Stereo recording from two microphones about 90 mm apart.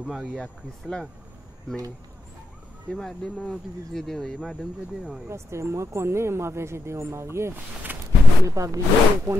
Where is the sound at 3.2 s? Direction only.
15° left (ahead or behind).